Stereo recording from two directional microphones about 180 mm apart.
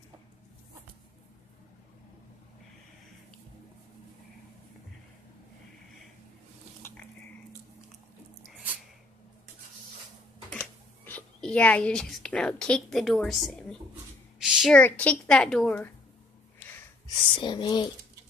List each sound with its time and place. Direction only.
10.5 s a woman's voice: 10° left (ahead or behind)
17.1 s speech: 25° left (ahead or behind)